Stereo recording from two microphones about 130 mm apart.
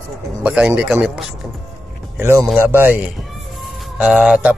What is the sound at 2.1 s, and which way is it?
A man's voice, 20° right (ahead or behind).